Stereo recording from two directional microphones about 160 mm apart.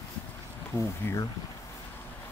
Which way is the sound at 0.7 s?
20° left (ahead or behind).